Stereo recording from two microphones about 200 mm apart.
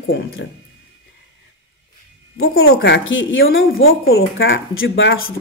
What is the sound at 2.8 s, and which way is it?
Speech, 65° left (ahead or behind).